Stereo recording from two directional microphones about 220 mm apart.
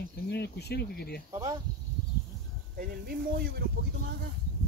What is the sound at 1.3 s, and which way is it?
Speech, 15° right (ahead or behind).